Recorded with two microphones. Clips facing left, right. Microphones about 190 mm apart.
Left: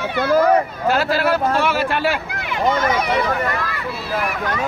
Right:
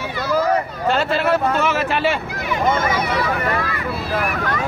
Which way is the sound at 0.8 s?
5° left (ahead or behind).